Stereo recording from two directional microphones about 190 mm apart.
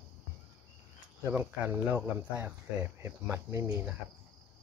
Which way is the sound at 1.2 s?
10° right (ahead or behind).